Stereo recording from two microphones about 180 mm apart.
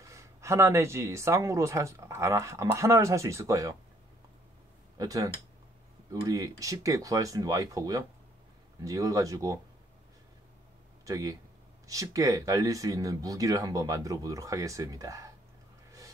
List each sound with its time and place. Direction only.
0.0 s speech: 15° right (ahead or behind)
4.9 s speech: 20° right (ahead or behind)
11.1 s speech: 20° right (ahead or behind)